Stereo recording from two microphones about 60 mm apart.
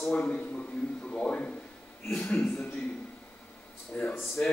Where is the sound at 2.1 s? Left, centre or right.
Centre.